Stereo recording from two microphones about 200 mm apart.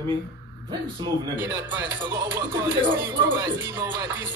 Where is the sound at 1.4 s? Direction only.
10° right (ahead or behind).